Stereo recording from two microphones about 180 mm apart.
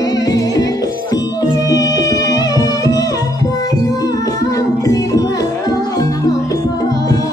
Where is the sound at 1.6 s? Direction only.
20° left (ahead or behind).